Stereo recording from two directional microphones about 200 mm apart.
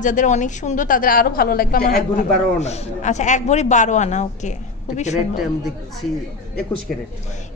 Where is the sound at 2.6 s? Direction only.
35° left (ahead or behind).